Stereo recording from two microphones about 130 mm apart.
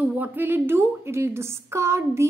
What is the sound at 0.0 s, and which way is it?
A woman's voice, 10° right (ahead or behind).